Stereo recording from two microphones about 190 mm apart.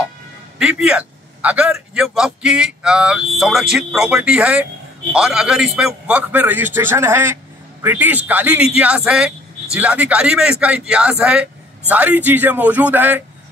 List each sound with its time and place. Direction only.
0.6 s a man's voice: 5° right (ahead or behind)